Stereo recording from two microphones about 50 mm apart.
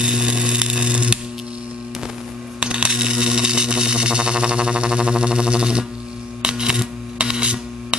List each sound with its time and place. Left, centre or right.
0.0 s a sound: centre
2.6 s coin: centre
6.4 s camera: centre